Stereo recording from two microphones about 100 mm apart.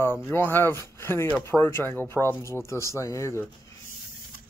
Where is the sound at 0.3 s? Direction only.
20° left (ahead or behind).